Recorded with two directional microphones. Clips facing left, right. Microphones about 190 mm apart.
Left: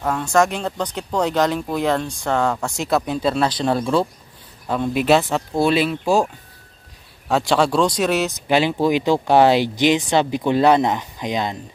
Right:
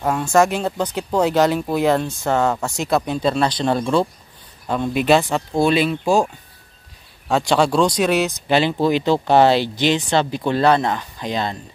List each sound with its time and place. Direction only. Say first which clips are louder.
0.0 s speech: right 2 dB; 10° right (ahead or behind)
7.2 s speech: right 1 dB; centre (ahead or behind)
8.4 s speech: even; 10° left (ahead or behind)